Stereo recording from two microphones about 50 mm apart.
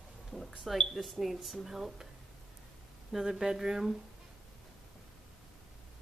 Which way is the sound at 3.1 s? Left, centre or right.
Centre.